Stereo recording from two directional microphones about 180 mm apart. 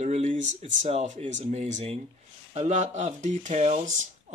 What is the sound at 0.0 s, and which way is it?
Speech, 40° right (ahead or behind).